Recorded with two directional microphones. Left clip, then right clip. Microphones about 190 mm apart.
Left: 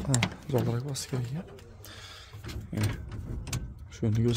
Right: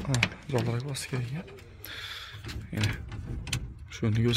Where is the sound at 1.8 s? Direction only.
10° left (ahead or behind).